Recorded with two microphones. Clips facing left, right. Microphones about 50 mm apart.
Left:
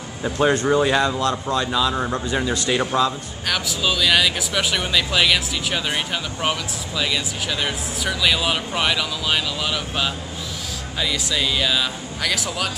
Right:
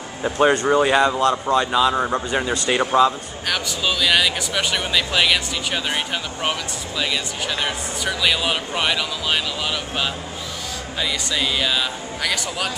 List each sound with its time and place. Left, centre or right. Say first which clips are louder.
0.2 s speech: right 2 dB; centre
7.0 s speech: even; centre